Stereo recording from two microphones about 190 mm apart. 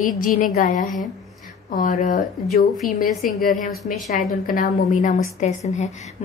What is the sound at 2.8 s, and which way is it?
A woman's voice, centre (ahead or behind).